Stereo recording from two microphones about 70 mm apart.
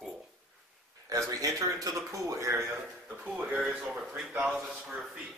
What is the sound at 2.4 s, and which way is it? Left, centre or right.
Speech, right.